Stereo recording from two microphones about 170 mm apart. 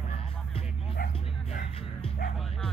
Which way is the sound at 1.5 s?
45° left (ahead or behind).